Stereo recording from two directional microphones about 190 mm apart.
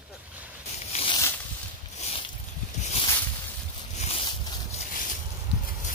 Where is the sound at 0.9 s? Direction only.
25° left (ahead or behind).